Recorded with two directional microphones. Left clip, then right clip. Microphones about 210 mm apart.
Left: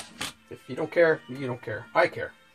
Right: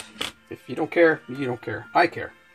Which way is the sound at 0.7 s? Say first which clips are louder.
Right 3 dB; 40° right (ahead or behind).